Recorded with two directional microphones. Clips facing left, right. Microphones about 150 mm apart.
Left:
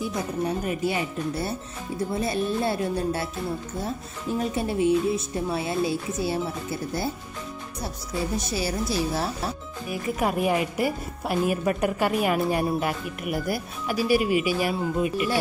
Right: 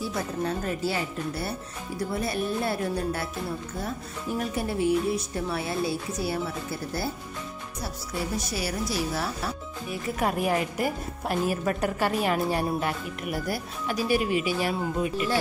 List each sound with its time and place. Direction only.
0.0 s a woman's voice: 15° left (ahead or behind)
8.4 s speech: 25° left (ahead or behind)
10.1 s a woman's voice: 5° left (ahead or behind)